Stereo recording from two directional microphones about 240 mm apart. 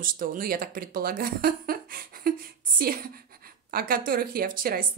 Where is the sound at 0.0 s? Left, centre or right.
Right.